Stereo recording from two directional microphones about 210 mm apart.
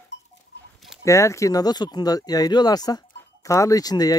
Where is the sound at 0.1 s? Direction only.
55° left (ahead or behind).